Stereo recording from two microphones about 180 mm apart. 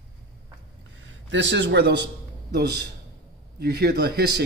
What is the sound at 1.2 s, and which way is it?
A man's voice, 85° right.